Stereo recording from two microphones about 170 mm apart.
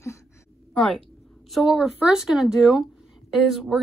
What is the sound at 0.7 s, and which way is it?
A woman's voice, 5° left (ahead or behind).